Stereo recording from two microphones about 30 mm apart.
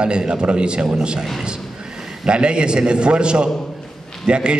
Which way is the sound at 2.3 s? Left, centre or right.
Right.